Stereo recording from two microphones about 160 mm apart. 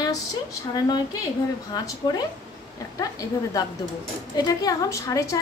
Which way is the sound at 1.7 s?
25° left (ahead or behind).